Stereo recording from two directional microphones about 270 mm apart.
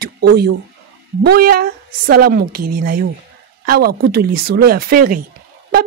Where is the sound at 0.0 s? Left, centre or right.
Right.